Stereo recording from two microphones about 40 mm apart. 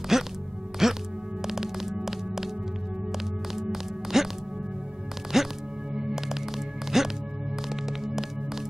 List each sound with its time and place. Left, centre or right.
0.1 s music: centre
5.3 s music: centre